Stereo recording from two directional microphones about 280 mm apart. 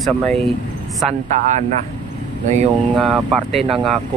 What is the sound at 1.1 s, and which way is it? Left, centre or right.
Speech, right.